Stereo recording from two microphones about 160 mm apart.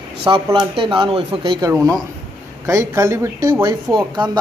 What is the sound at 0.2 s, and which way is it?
Speech, 30° right (ahead or behind).